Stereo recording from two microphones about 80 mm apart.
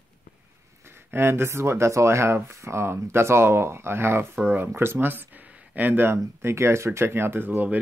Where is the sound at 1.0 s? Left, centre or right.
Right.